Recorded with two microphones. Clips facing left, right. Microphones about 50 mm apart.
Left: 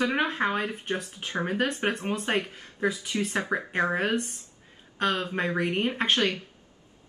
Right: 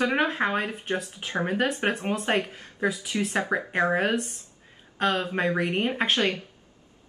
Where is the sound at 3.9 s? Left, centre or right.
Centre.